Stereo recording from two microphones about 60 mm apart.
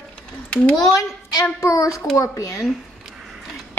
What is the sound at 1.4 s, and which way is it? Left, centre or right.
A child's voice, left.